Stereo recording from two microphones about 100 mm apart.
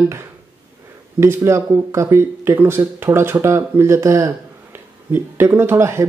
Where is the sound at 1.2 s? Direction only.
25° right (ahead or behind).